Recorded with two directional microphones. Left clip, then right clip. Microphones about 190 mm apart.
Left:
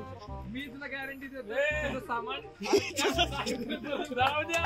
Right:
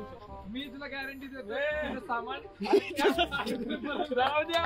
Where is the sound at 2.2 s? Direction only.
30° right (ahead or behind).